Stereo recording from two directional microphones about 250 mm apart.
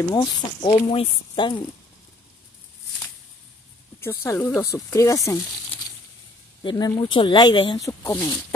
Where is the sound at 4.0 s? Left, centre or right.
Centre.